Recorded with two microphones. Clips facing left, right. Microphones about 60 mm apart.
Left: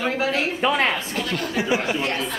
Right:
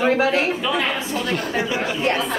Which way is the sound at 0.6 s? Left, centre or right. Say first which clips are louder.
Left 2 dB; left.